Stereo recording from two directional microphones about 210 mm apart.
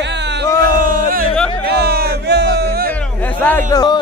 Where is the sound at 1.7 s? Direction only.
50° right (ahead or behind).